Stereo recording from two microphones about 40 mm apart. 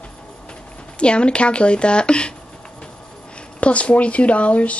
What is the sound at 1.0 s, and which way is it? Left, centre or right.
Speech, left.